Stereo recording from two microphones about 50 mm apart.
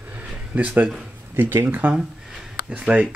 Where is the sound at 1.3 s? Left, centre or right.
Right.